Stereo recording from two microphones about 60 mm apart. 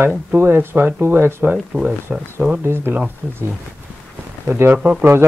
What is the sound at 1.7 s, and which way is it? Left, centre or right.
Speech, centre.